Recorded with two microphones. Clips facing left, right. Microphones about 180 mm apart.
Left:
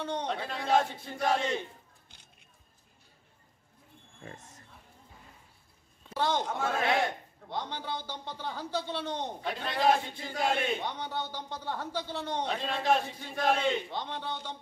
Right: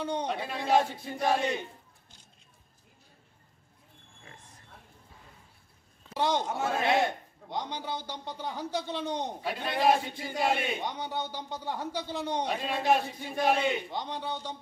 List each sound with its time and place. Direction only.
0.0 s a man's voice: 10° right (ahead or behind)
6.1 s a man's voice: 15° right (ahead or behind)